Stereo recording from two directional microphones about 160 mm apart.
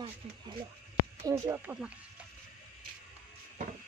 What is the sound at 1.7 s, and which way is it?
Speech, 15° right (ahead or behind).